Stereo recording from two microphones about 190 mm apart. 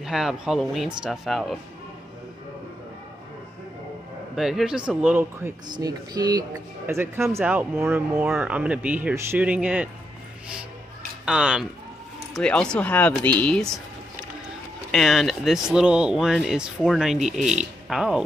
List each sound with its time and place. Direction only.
0.0 s speech: centre (ahead or behind)
4.4 s speech: centre (ahead or behind)
5.7 s speech: 20° right (ahead or behind)
11.2 s speech: 5° right (ahead or behind)
14.9 s speech: centre (ahead or behind)